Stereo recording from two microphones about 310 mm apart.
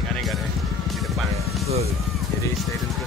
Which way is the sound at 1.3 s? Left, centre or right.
Centre.